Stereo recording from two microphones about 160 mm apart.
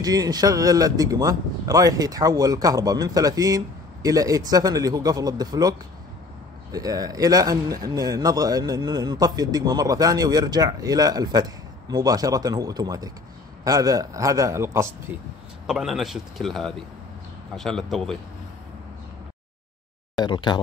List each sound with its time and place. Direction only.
0.0 s speech: 25° right (ahead or behind)
15.6 s a man's voice: centre (ahead or behind)
20.2 s speech: 30° left (ahead or behind)